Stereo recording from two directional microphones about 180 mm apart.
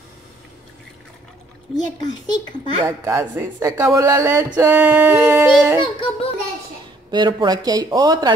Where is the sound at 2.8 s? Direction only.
15° right (ahead or behind).